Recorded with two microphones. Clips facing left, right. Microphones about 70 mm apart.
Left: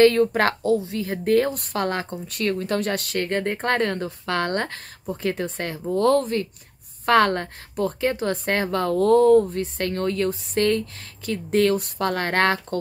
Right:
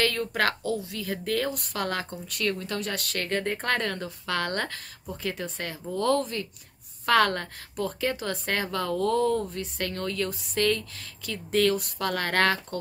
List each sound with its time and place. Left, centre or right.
0.0 s a woman's voice: left